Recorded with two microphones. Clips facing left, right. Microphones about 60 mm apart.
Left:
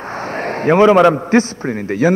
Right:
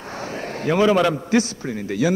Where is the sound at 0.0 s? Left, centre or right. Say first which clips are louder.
Left 7 dB; left.